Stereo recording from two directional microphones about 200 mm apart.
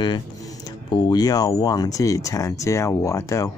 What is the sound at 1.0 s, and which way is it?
Speech, 20° left (ahead or behind).